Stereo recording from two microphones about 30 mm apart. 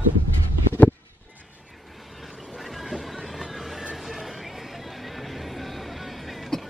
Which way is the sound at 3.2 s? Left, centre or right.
Centre.